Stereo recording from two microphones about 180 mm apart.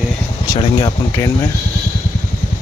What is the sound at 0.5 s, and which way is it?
Speech, 20° left (ahead or behind).